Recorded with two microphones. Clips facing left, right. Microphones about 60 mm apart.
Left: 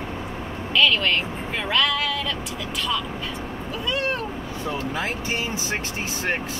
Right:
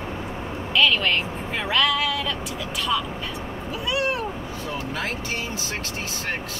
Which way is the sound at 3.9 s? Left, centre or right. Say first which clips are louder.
Right 1 dB; centre.